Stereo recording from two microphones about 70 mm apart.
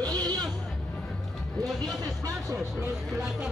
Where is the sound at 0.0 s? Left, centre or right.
Right.